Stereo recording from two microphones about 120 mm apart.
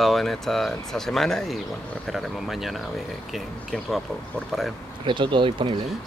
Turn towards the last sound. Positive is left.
turn(degrees=-45)  # may be behind; listen again after turning